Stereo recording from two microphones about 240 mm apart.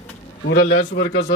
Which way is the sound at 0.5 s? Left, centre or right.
Left.